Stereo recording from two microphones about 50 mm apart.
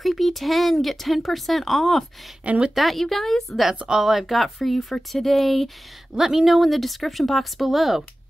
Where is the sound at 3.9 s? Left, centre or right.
Centre.